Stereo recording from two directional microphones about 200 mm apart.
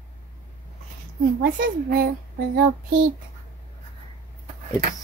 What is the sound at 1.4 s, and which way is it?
Speech, 50° right (ahead or behind).